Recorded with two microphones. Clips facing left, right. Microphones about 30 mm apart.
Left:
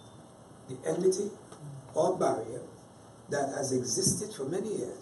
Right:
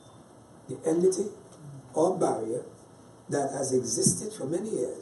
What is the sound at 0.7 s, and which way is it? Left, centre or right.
A man's voice, centre.